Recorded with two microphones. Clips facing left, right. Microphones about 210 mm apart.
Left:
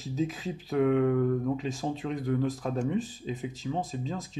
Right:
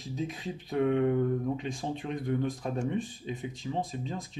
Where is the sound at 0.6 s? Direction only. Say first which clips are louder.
Left 2 dB; 25° right (ahead or behind).